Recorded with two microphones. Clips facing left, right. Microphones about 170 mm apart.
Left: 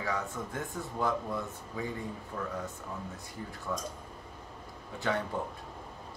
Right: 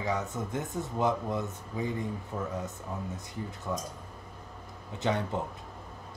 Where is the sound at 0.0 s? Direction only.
20° right (ahead or behind).